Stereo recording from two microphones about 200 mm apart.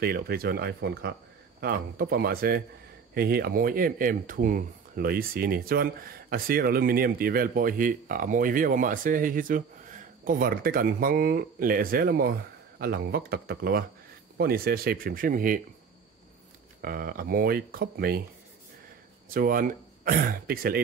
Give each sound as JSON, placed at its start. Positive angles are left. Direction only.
{"t": 0.0, "sound": "speech", "side_deg": -50}
{"t": 16.8, "sound": "speech", "side_deg": -45}
{"t": 19.2, "sound": "speech", "side_deg": -45}